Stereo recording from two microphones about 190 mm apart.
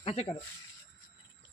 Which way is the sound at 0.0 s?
35° left (ahead or behind).